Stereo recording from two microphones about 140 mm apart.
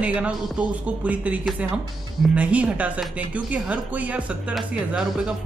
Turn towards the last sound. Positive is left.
turn(degrees=-5)  # may be behind; listen again after turning